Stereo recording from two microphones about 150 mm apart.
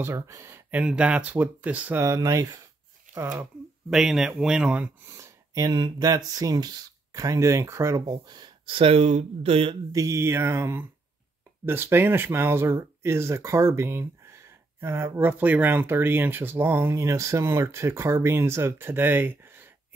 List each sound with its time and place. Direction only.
0.0 s speech: 20° right (ahead or behind)
3.1 s a sound: 60° right (ahead or behind)
3.9 s speech: centre (ahead or behind)
5.1 s speech: 20° right (ahead or behind); by 9.8 s 40° right (ahead or behind)
9.9 s speech: 20° right (ahead or behind)